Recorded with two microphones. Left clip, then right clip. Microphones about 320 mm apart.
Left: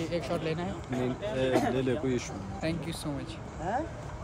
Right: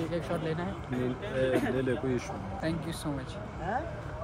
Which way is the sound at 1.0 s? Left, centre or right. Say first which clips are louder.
Even; centre.